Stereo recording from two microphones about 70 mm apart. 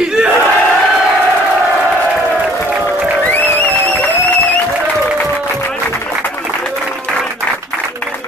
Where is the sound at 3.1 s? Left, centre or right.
Left.